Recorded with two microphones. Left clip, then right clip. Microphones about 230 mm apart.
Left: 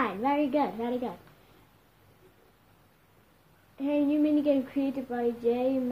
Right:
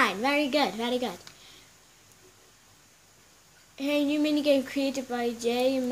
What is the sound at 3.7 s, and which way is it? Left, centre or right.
A woman's voice, right.